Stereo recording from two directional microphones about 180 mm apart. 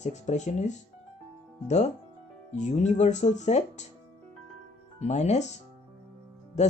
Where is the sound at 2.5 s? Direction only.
40° left (ahead or behind).